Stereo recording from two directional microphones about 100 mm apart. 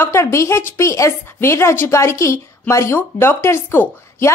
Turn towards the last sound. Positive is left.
turn(degrees=25)  # may be behind; listen again after turning